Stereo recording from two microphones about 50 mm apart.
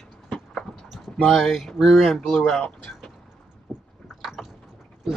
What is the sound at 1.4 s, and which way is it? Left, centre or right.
Speech, centre.